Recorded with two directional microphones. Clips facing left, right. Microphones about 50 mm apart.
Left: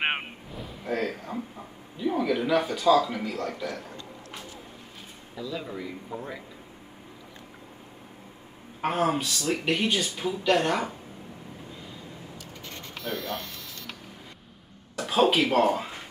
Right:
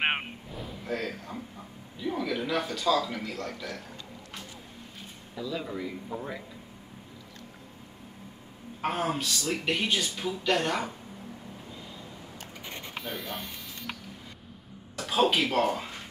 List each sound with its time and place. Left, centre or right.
0.0 s a sound: centre
0.8 s a sound: centre
2.0 s speech: centre
5.3 s speech: centre
8.8 s speech: centre
12.6 s printer: centre
15.0 s speech: centre